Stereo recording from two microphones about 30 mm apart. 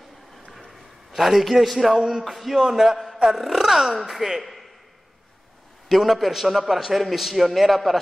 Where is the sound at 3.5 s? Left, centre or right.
Centre.